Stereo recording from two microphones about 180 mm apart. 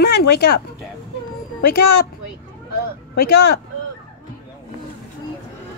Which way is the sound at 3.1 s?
65° left (ahead or behind).